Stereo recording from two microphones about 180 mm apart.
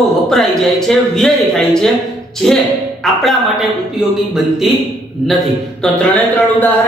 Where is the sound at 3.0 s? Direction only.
Centre (ahead or behind).